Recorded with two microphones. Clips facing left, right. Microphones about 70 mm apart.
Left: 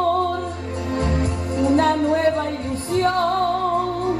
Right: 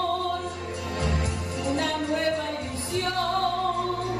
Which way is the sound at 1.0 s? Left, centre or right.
Left.